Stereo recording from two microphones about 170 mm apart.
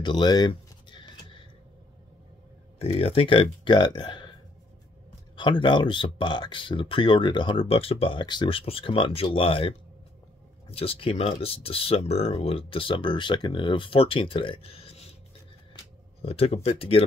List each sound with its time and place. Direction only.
0.0 s a sound: 25° left (ahead or behind)
2.8 s speech: 35° left (ahead or behind)
5.3 s speech: 30° left (ahead or behind)
16.2 s speech: 35° left (ahead or behind)